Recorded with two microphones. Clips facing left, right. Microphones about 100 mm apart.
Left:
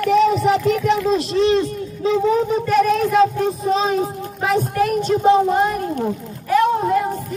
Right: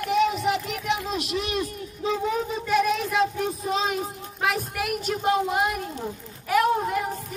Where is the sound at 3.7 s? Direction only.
35° left (ahead or behind).